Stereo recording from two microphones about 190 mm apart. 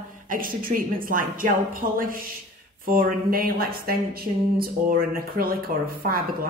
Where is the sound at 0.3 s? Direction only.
50° right (ahead or behind).